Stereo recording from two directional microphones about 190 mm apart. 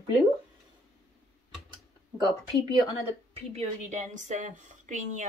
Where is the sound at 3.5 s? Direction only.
35° right (ahead or behind).